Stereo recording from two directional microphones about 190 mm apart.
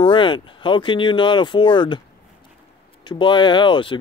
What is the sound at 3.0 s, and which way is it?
Speech, 25° left (ahead or behind).